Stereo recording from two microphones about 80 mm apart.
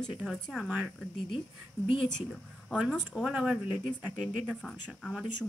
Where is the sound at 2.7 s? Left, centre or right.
Centre.